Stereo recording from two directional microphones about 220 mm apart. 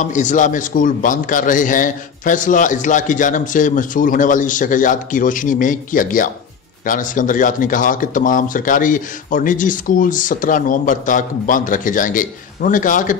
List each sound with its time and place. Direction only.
0.0 s a man's voice: 35° left (ahead or behind)